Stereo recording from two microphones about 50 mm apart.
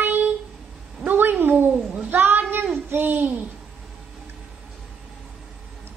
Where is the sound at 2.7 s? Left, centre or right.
Right.